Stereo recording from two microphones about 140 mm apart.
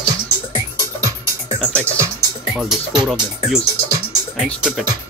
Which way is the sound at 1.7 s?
20° right (ahead or behind).